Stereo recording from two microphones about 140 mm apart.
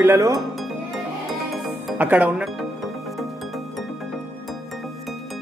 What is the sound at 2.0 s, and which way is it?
Speech, 10° right (ahead or behind).